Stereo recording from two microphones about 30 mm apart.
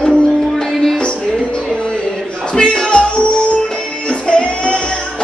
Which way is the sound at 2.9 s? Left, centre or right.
Left.